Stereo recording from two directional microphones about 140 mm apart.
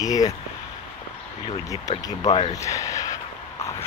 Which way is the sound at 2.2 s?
45° left (ahead or behind).